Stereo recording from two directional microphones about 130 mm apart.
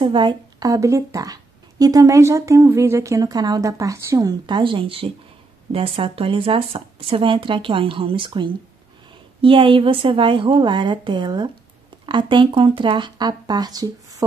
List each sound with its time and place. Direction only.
0.0 s a woman's voice: 35° right (ahead or behind)